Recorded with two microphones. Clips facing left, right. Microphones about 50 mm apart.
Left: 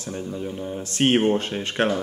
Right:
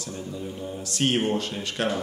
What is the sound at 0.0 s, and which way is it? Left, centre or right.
Speech, left.